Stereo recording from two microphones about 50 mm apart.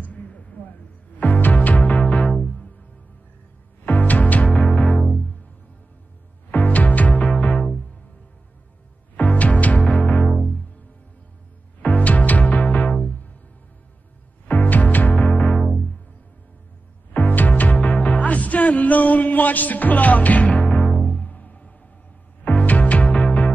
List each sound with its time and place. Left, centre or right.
0.0 s a sound: left
1.2 s music: left
3.8 s music: left
6.5 s music: left
7.3 s music: centre
9.1 s music: left
11.8 s music: left
14.5 s music: left
17.1 s music: left
23.0 s music: centre